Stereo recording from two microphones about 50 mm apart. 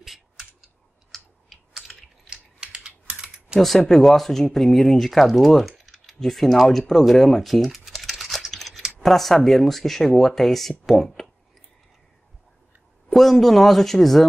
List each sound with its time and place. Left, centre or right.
0.0 s scissors: centre
1.1 s computer keyboard: centre
2.2 s typing: centre
3.5 s speech: centre
13.1 s speech: centre